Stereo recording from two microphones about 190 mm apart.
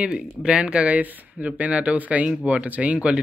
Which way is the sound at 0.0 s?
5° right (ahead or behind).